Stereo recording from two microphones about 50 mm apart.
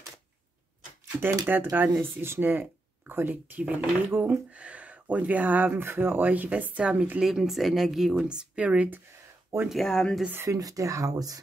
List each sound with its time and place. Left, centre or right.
1.2 s speech: right
4.5 s speech: right
5.9 s speech: right
6.8 s a woman's voice: centre
8.3 s speech: right
9.5 s speech: right
9.8 s speech: centre
10.4 s speech: right